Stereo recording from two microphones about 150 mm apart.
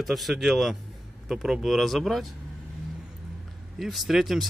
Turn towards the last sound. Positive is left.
turn(degrees=0)  # may be behind; listen again after turning